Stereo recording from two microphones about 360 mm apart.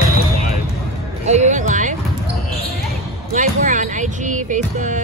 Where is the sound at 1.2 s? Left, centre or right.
Centre.